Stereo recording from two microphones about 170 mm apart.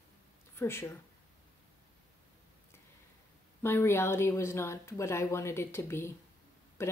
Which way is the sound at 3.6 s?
15° left (ahead or behind).